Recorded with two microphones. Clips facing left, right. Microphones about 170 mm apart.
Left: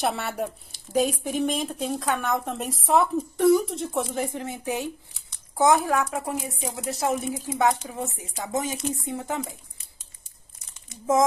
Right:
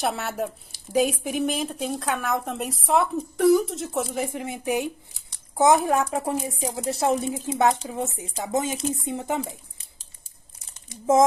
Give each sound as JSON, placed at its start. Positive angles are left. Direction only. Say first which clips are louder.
{"t": 0.0, "sound": "speech", "louder": "even", "side_deg": 0}